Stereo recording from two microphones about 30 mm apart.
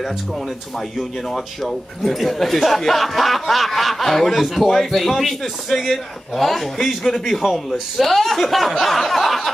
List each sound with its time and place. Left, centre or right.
1.3 s speech: centre
7.2 s speech: centre
8.0 s speech: centre